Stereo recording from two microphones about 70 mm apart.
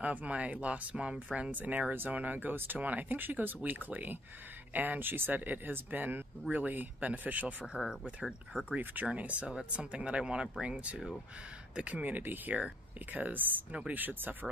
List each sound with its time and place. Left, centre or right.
0.0 s speech: right
7.7 s speech: centre; by 14.5 s right